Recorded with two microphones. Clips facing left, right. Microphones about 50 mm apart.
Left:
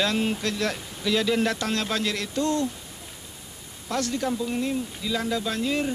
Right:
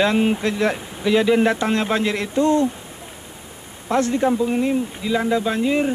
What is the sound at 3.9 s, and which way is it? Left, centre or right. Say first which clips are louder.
Speech: right 8 dB; right.